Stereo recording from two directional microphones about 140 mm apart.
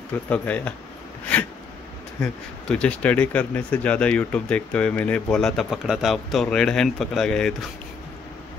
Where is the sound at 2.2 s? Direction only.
5° left (ahead or behind).